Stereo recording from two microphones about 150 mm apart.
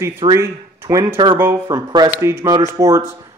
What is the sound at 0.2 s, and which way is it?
Speech, 20° right (ahead or behind).